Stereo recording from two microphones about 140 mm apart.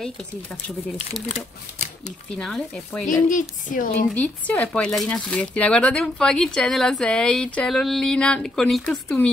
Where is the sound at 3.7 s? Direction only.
75° left (ahead or behind).